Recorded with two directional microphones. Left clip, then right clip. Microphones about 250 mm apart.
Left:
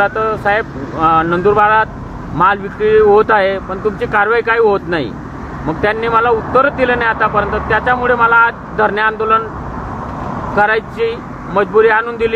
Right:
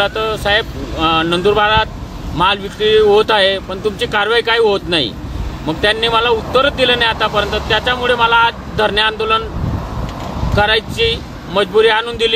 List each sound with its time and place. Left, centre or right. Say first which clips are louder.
0.0 s speech: left 2 dB; centre
10.5 s speech: left 1 dB; centre